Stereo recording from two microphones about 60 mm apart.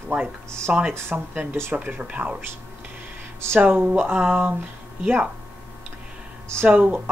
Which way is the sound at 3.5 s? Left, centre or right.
Right.